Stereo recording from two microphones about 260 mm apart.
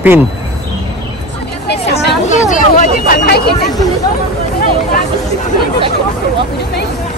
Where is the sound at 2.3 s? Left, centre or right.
Left.